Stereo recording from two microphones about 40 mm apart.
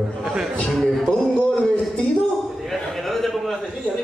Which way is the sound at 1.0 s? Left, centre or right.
Centre.